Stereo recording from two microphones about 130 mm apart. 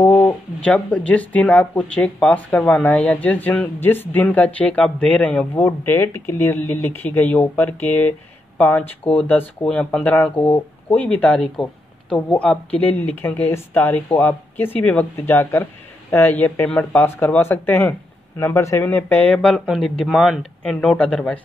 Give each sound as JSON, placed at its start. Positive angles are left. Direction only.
{"t": 0.0, "sound": "speech", "side_deg": 10}
{"t": 5.7, "sound": "speech", "side_deg": 20}